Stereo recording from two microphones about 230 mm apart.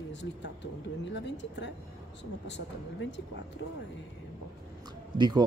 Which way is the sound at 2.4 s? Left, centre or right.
Left.